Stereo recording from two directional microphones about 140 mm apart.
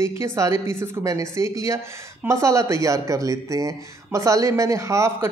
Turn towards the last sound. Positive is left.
turn(degrees=-20)  # may be behind; listen again after turning